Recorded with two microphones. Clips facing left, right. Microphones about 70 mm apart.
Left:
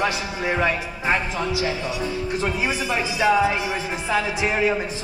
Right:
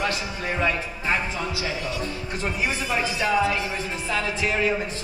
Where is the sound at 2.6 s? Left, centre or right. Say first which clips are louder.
Left 2 dB; centre.